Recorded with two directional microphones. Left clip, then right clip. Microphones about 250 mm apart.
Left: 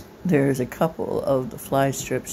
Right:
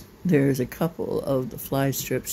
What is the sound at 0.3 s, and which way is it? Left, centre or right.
Speech, right.